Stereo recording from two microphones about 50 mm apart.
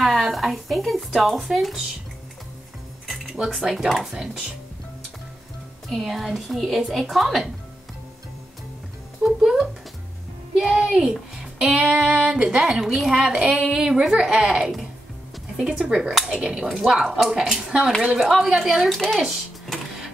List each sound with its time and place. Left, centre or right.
0.0 s speech: centre
3.5 s speech: centre
5.9 s speech: centre
9.2 s speech: centre
10.7 s speech: centre
12.1 s music: centre
12.4 s speech: centre
18.9 s speech: centre
19.2 s a sound: centre